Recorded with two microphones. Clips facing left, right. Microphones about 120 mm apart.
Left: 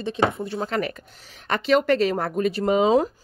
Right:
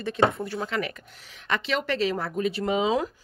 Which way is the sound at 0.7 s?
40° left (ahead or behind).